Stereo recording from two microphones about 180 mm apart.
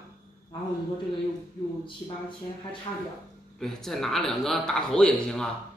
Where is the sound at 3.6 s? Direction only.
Centre (ahead or behind).